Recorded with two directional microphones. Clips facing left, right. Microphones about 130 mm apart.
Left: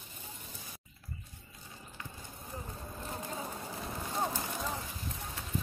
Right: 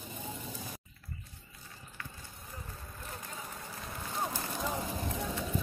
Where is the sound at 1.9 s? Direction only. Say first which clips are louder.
Left 1 dB; 25° left (ahead or behind).